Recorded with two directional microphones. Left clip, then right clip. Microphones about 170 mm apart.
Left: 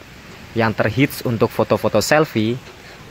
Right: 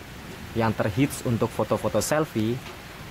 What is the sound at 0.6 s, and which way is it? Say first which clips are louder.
A woman's voice: left 7 dB; 25° left (ahead or behind).